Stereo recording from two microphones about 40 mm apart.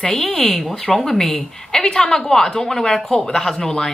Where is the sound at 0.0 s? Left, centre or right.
Centre.